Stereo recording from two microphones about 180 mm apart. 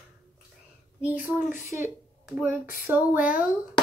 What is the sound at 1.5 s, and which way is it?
Speech, 45° left (ahead or behind).